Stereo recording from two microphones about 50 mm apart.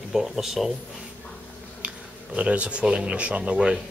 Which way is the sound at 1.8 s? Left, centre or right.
Right.